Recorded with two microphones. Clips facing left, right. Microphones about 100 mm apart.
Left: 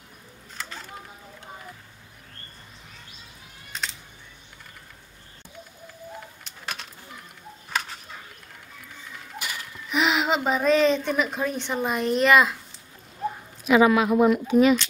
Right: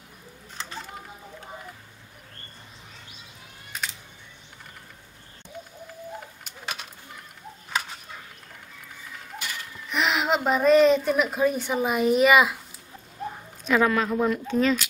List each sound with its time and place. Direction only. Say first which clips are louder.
9.4 s speech: left 2 dB; centre (ahead or behind)
13.7 s speech: left 4 dB; 10° left (ahead or behind)